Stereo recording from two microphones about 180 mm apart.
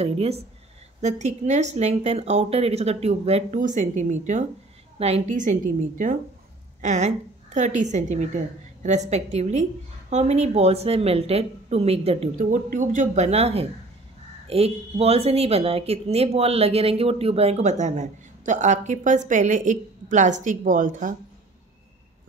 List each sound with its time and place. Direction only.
0.0 s a woman's voice: 35° right (ahead or behind)